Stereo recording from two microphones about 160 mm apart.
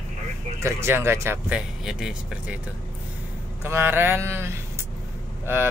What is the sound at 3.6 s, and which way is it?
Speech, 15° right (ahead or behind).